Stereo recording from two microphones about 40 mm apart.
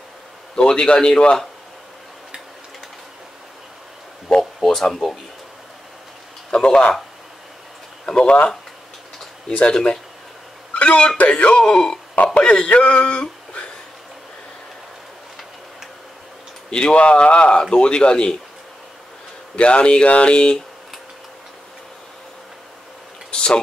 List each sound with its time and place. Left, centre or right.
0.6 s speech: left
4.6 s a sound: centre
4.9 s speech: centre
6.5 s speech: centre
8.1 s speech: left
9.7 s speech: centre
10.7 s telephone: left
11.1 s speech: left
11.6 s speech: centre
12.4 s speech: left
16.7 s speech: left
19.5 s speech: left
23.3 s a sound: left